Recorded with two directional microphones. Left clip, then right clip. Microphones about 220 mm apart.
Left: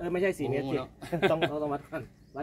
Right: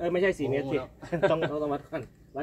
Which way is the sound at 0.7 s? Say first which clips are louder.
Right 2 dB; 35° left (ahead or behind).